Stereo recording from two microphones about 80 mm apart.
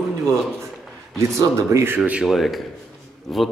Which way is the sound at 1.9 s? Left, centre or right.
Centre.